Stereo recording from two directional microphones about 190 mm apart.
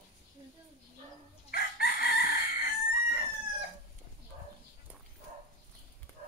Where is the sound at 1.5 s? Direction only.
55° left (ahead or behind).